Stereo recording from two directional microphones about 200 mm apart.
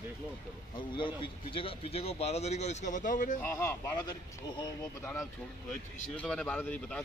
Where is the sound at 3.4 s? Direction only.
10° left (ahead or behind).